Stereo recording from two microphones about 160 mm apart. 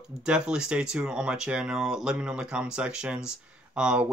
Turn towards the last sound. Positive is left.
turn(degrees=-5)  # may be behind; listen again after turning